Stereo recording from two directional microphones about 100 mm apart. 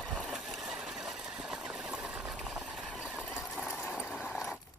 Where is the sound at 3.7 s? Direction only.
15° left (ahead or behind).